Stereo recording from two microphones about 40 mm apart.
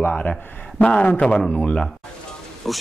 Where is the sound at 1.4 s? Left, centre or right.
Left.